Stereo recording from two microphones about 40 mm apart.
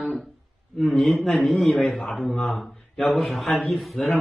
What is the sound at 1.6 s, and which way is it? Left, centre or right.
Speech, centre.